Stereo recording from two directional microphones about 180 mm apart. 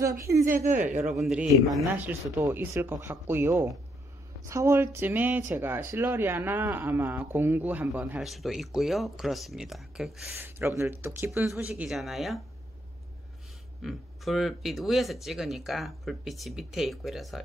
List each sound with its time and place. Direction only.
0.0 s speech: 15° right (ahead or behind)
0.7 s speech: 45° right (ahead or behind)
1.2 s speech: 5° right (ahead or behind)
2.4 s speech: 15° right (ahead or behind)
10.3 s speech: 15° right (ahead or behind)
13.8 s speech: centre (ahead or behind)